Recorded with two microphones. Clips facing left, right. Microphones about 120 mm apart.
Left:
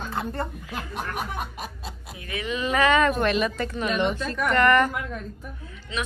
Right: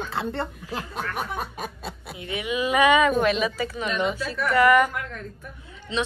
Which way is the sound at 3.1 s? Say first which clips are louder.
Right 1 dB; centre (ahead or behind).